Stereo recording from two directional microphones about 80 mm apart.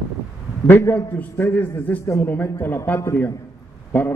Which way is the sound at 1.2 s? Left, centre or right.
Left.